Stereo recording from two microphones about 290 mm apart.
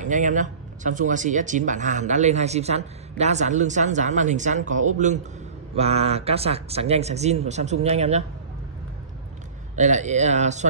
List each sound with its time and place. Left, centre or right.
0.0 s speech: right
9.8 s speech: right